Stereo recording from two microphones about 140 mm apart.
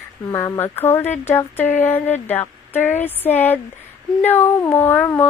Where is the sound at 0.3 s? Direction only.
20° left (ahead or behind).